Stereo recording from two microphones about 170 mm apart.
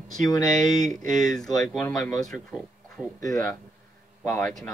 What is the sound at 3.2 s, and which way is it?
A man's voice, 20° left (ahead or behind).